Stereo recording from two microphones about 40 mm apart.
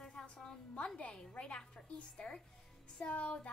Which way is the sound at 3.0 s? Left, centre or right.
Left.